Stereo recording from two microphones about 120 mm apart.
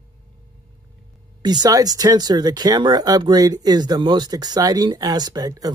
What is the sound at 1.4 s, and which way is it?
Speech, 35° right (ahead or behind).